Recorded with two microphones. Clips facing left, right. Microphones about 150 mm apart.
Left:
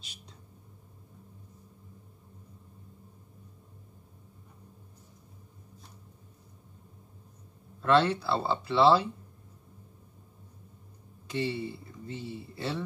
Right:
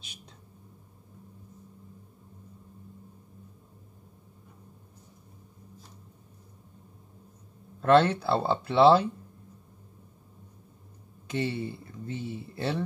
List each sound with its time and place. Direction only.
7.8 s speech: 50° right (ahead or behind)
11.3 s speech: 50° right (ahead or behind)